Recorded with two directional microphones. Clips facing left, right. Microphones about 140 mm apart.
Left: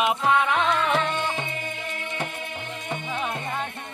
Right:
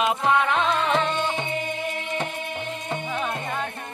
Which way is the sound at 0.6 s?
20° right (ahead or behind).